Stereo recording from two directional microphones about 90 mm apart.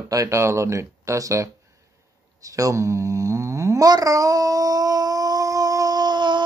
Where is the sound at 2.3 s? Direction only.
40° right (ahead or behind).